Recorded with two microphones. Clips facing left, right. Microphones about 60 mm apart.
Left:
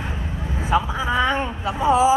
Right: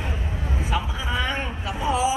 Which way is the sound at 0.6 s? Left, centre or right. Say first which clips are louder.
Left 8 dB; left.